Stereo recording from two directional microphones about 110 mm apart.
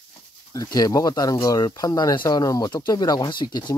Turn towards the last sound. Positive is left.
turn(degrees=40)  # may be behind; listen again after turning